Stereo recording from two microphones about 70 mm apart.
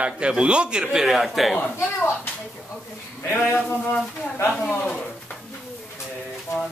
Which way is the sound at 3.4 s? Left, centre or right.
Left.